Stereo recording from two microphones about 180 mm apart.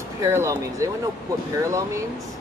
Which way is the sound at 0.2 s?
15° right (ahead or behind).